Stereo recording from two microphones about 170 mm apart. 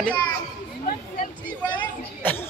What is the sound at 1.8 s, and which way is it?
Chatter, 10° left (ahead or behind).